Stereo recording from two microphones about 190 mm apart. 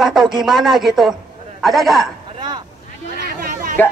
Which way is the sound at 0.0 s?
Centre (ahead or behind).